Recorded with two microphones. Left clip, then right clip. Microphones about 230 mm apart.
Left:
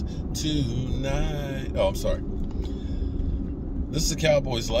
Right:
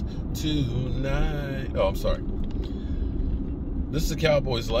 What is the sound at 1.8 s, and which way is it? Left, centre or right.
Speech, centre.